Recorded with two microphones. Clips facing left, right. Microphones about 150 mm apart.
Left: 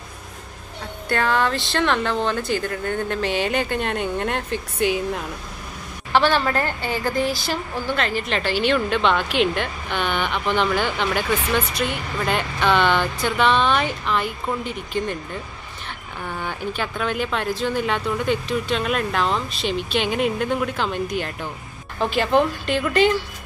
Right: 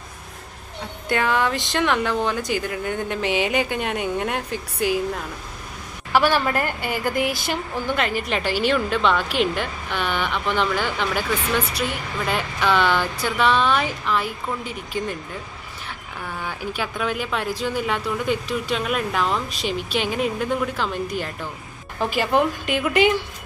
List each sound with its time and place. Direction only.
1.0 s speech: 15° right (ahead or behind)
16.3 s speech: 5° right (ahead or behind)